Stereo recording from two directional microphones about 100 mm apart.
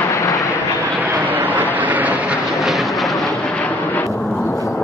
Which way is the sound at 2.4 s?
Centre (ahead or behind).